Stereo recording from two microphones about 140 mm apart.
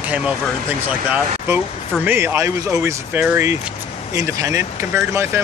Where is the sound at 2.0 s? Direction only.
15° right (ahead or behind).